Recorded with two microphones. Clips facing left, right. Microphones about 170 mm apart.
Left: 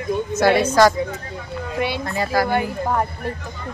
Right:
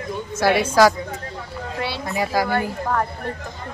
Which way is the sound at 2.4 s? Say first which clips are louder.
Left 2 dB; 20° left (ahead or behind).